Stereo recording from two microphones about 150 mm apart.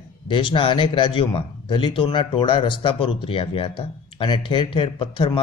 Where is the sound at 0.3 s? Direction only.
35° left (ahead or behind).